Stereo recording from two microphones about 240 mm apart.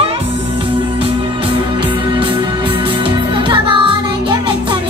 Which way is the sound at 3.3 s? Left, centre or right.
Right.